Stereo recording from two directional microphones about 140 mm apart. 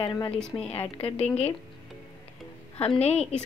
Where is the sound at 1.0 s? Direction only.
45° left (ahead or behind).